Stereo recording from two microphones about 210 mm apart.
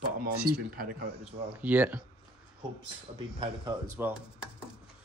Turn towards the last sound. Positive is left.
turn(degrees=-10)  # may be behind; listen again after turning